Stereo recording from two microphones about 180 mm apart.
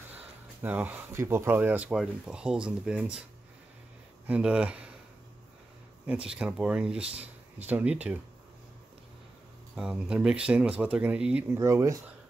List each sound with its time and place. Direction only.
0.1 s speech: 10° right (ahead or behind)
4.3 s speech: 5° right (ahead or behind)
6.0 s speech: 5° right (ahead or behind)
9.8 s speech: 5° right (ahead or behind)